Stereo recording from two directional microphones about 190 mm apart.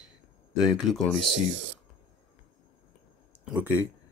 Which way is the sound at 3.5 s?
10° right (ahead or behind).